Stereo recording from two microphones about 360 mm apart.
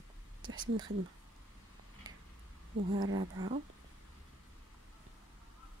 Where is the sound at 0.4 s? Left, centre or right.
Right.